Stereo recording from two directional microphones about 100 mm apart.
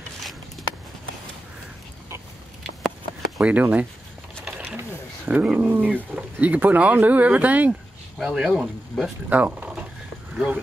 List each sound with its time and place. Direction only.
3.3 s speech: 15° right (ahead or behind)
9.4 s a sound: 15° right (ahead or behind)
10.3 s speech: 10° right (ahead or behind)